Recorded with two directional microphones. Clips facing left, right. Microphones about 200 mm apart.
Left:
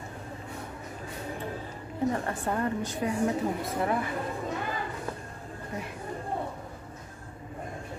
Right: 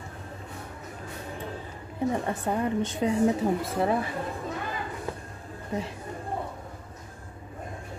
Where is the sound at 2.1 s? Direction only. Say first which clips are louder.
Right 2 dB; 15° right (ahead or behind).